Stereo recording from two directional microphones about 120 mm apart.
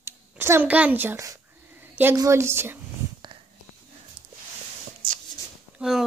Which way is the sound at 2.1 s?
25° right (ahead or behind).